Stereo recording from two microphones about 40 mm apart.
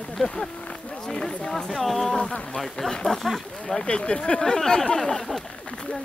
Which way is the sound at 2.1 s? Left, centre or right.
Left.